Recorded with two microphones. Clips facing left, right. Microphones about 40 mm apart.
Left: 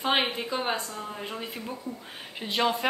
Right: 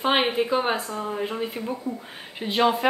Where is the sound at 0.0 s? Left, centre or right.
Centre.